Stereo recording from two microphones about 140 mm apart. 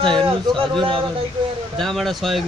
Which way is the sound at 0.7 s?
40° right (ahead or behind).